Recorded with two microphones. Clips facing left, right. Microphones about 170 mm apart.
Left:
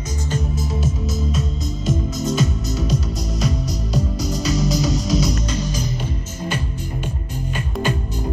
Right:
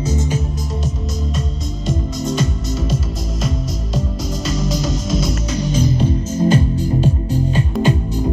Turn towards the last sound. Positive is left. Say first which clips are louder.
# right 6 dB
turn(degrees=-30)  # may be behind; listen again after turning